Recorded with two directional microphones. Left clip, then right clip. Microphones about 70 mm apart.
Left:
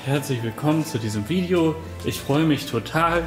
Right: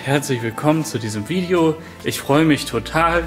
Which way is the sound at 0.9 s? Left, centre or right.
Centre.